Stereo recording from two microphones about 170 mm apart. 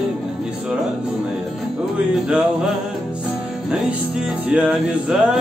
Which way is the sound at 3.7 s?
5° right (ahead or behind).